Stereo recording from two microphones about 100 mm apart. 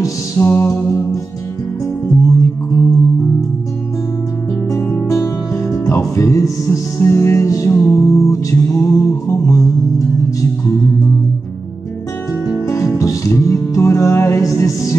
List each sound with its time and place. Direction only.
0.4 s music: 25° left (ahead or behind)
2.0 s music: 30° left (ahead or behind)
5.1 s music: 30° left (ahead or behind)
8.8 s humming: 30° left (ahead or behind)
12.4 s music: 30° left (ahead or behind)